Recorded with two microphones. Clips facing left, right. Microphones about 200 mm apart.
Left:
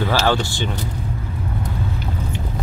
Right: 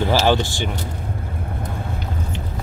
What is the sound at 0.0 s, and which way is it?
Speech, 15° right (ahead or behind).